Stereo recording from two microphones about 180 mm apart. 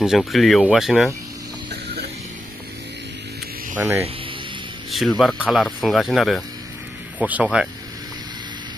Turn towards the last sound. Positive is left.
turn(degrees=-5)  # may be behind; listen again after turning